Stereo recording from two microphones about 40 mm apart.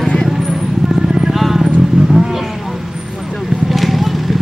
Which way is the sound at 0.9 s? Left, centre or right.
Centre.